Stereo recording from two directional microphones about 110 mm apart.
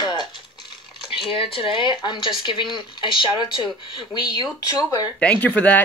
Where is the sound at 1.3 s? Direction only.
50° left (ahead or behind).